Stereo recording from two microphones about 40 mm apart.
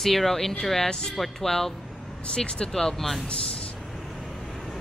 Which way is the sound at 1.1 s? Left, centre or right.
Centre.